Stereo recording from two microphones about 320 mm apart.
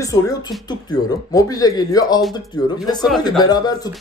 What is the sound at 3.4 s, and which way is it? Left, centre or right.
Speech, centre.